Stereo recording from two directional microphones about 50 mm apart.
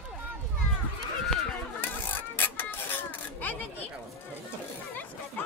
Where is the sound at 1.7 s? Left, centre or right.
Left.